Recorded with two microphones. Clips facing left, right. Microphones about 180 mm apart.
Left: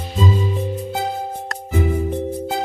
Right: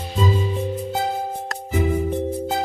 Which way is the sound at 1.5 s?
Centre (ahead or behind).